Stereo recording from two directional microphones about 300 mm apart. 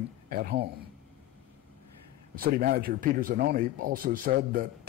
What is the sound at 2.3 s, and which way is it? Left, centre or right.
Speech, right.